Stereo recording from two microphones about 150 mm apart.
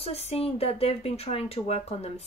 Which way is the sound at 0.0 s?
45° left (ahead or behind).